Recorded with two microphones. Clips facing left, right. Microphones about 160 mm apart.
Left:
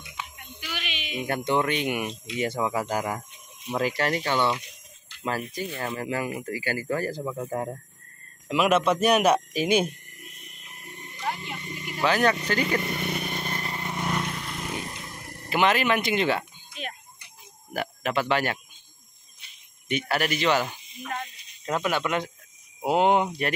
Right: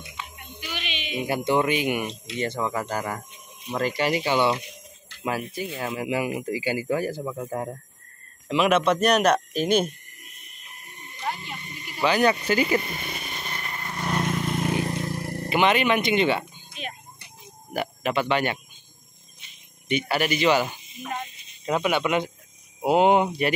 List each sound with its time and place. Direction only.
0.9 s a sound: 5° left (ahead or behind)
1.2 s speech: 5° right (ahead or behind); by 9.8 s 10° left (ahead or behind)
11.6 s a sound: 90° left
12.0 s speech: centre (ahead or behind)
12.8 s vehicle: 65° left (ahead or behind); by 13.6 s 50° left (ahead or behind)
13.6 s vehicle: 20° left (ahead or behind)
14.8 s a sound: 75° right (ahead or behind)
15.5 s speech: centre (ahead or behind)
19.9 s speech: centre (ahead or behind)